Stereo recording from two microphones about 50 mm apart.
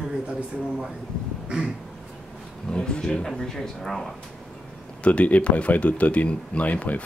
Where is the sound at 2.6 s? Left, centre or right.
Centre.